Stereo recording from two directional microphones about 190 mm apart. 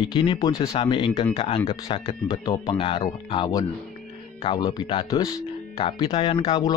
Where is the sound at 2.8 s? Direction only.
30° left (ahead or behind).